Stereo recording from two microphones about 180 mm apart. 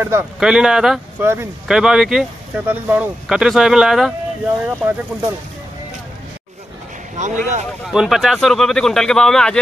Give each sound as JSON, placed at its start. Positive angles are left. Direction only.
{"t": 0.0, "sound": "speech", "side_deg": -15}
{"t": 0.4, "sound": "speech", "side_deg": -5}
{"t": 1.2, "sound": "speech", "side_deg": -15}
{"t": 1.7, "sound": "speech", "side_deg": 0}
{"t": 7.2, "sound": "speech", "side_deg": -45}
{"t": 7.8, "sound": "speech", "side_deg": 0}